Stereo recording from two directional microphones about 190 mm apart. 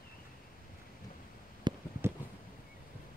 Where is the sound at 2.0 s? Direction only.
10° right (ahead or behind).